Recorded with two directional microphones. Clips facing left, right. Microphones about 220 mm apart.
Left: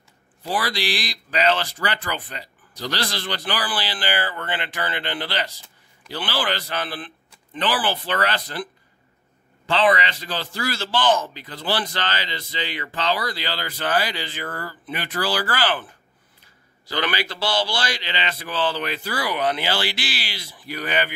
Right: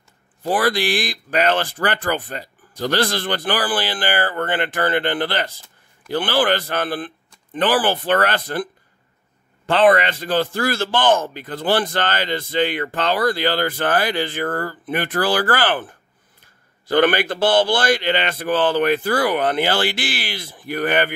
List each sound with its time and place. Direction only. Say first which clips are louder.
0.4 s a man's voice: right 7 dB; 50° right (ahead or behind)
9.7 s a man's voice: right 5 dB; 55° right (ahead or behind)